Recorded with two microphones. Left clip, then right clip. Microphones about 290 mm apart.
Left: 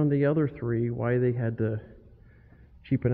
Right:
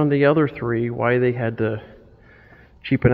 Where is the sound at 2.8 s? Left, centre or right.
Right.